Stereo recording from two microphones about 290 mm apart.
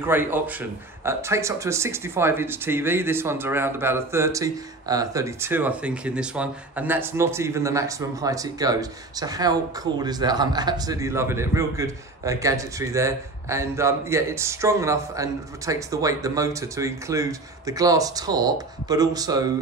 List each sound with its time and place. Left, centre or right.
0.0 s a man's voice: centre